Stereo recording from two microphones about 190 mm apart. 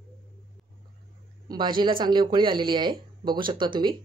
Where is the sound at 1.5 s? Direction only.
25° right (ahead or behind).